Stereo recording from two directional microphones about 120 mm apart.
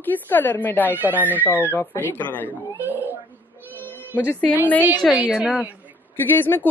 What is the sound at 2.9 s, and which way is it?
Whimper, 15° right (ahead or behind).